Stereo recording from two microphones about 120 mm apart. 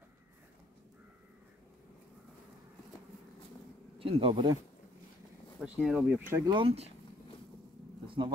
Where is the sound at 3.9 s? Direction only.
50° right (ahead or behind).